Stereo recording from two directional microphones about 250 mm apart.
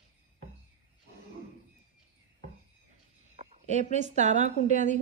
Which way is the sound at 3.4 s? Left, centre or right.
Right.